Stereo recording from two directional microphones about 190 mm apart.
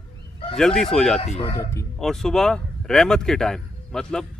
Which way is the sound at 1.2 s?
30° left (ahead or behind).